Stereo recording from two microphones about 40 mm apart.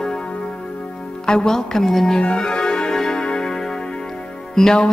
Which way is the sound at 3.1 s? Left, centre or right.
Left.